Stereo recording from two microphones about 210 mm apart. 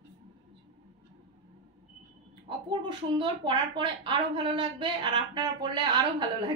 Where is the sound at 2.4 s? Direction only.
20° right (ahead or behind).